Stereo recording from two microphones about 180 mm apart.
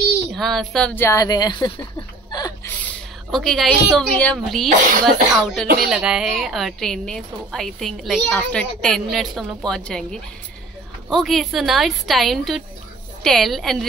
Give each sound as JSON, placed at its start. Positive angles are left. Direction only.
{"t": 0.3, "sound": "a woman's voice", "side_deg": 0}
{"t": 2.3, "sound": "a sound", "side_deg": 20}
{"t": 2.8, "sound": "a woman's voice", "side_deg": 5}
{"t": 11.1, "sound": "a woman's voice", "side_deg": 0}